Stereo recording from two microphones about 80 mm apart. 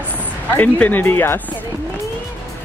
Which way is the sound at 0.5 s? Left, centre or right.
Left.